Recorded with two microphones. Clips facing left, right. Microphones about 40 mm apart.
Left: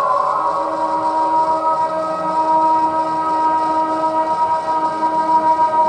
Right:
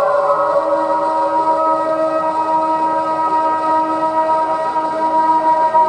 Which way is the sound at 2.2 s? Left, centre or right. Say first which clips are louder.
Left 1 dB; centre.